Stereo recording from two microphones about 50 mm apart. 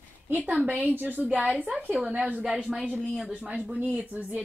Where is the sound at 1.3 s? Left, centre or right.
Right.